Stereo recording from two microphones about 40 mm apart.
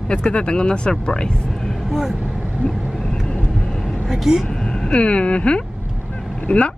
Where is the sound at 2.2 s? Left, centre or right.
Right.